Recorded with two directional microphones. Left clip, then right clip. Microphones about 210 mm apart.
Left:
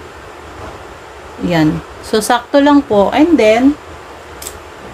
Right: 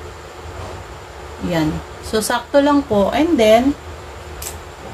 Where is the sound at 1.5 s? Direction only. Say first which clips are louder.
Left 6 dB; 45° left (ahead or behind).